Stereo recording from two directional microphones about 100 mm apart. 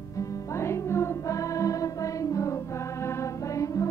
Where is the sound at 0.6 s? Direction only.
25° left (ahead or behind).